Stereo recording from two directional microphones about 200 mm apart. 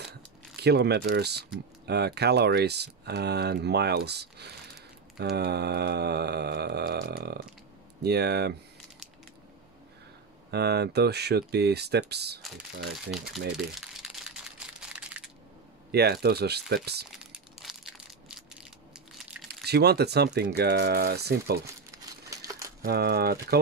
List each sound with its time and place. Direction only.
0.6 s speech: 55° right (ahead or behind)
10.5 s speech: 55° right (ahead or behind)
12.4 s speech: centre (ahead or behind)
13.6 s crumpling: centre (ahead or behind)
15.9 s speech: 55° right (ahead or behind)
17.2 s crushing: 5° right (ahead or behind)
19.4 s speech: 55° right (ahead or behind)
22.3 s crumpling: 15° right (ahead or behind)
22.8 s speech: 55° right (ahead or behind)